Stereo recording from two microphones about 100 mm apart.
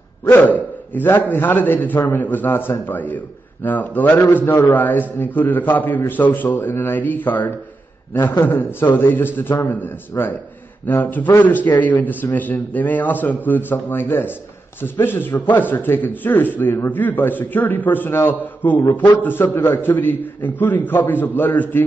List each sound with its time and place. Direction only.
0.2 s a man's voice: 20° left (ahead or behind)